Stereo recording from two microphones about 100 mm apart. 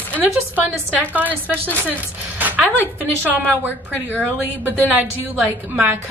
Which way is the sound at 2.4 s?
20° right (ahead or behind).